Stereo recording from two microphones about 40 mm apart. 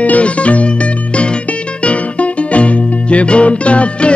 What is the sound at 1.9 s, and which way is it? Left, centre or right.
Music, left.